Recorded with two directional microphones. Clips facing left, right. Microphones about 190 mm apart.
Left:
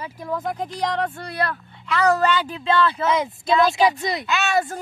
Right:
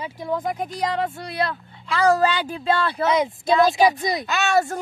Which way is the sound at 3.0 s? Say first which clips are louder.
Right 1 dB; 15° right (ahead or behind).